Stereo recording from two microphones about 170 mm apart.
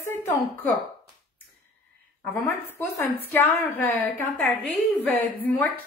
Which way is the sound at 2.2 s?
10° left (ahead or behind).